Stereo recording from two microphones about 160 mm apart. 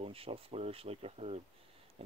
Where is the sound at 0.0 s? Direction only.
35° right (ahead or behind).